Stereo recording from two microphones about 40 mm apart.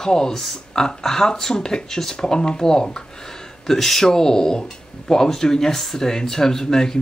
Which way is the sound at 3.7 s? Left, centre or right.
Centre.